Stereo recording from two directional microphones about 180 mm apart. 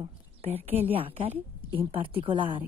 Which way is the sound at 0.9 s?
30° right (ahead or behind).